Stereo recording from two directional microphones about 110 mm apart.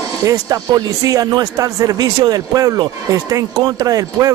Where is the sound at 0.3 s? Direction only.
35° right (ahead or behind).